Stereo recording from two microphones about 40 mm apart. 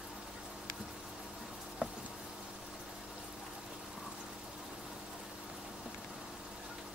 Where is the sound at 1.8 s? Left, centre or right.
Right.